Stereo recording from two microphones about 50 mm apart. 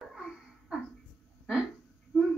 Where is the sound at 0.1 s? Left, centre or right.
Centre.